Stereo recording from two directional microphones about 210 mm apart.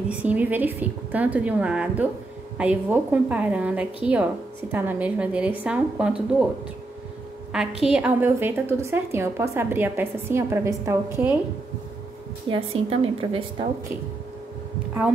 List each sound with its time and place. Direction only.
0.1 s a woman's voice: 5° right (ahead or behind)
7.8 s a woman's voice: 5° right (ahead or behind)
12.4 s a woman's voice: 25° right (ahead or behind)